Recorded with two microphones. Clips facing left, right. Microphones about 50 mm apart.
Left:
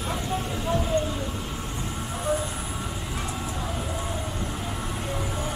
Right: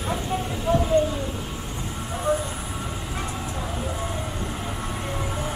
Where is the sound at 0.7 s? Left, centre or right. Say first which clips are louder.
Right 5 dB; centre.